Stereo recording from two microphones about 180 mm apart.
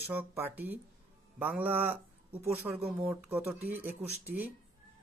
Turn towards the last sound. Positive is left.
turn(degrees=-10)  # may be behind; listen again after turning